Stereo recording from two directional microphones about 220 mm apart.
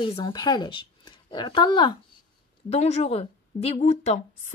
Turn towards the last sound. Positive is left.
turn(degrees=30)  # may be behind; listen again after turning